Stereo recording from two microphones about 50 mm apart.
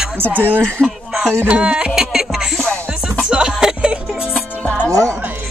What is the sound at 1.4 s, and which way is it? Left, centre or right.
Music, centre.